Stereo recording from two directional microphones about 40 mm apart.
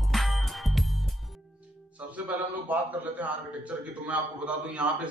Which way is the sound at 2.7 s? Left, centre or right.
Right.